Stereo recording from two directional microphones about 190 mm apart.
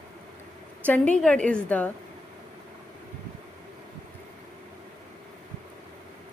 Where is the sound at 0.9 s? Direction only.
5° left (ahead or behind).